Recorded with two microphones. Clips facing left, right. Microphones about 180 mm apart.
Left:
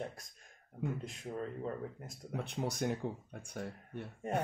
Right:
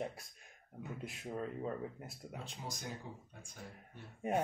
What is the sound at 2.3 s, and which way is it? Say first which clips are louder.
Speech: left 11 dB; 65° left (ahead or behind).